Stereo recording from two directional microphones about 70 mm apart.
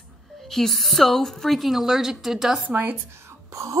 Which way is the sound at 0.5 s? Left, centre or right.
Centre.